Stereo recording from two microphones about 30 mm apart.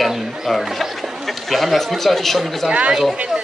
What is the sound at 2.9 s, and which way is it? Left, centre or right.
Speech, centre.